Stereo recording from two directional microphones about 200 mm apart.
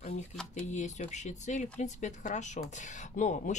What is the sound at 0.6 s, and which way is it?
Speech, 35° left (ahead or behind).